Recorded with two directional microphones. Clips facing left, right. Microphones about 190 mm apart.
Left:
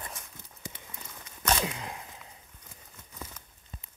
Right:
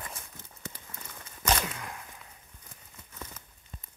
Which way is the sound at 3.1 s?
10° left (ahead or behind).